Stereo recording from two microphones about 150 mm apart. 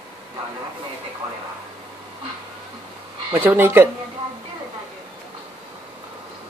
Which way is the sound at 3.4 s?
15° right (ahead or behind).